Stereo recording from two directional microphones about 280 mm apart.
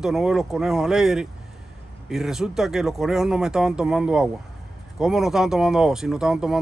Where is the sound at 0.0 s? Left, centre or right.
Centre.